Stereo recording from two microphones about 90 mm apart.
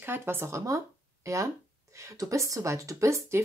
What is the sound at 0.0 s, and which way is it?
A woman's voice, 25° right (ahead or behind).